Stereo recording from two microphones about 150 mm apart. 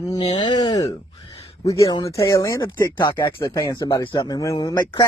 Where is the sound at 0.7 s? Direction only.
40° left (ahead or behind).